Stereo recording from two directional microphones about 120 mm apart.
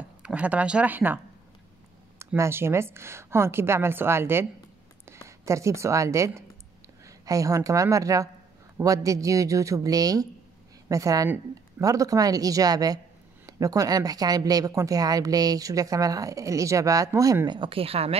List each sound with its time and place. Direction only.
0.2 s a woman's voice: 10° right (ahead or behind); by 17.6 s 30° right (ahead or behind)
17.6 s speech: 50° right (ahead or behind)